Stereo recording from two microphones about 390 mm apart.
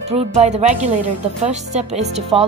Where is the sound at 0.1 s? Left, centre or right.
Centre.